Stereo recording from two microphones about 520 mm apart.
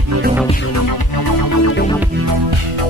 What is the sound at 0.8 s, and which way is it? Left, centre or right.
Music, left.